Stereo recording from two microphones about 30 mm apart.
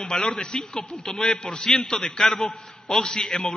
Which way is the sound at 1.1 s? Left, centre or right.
Centre.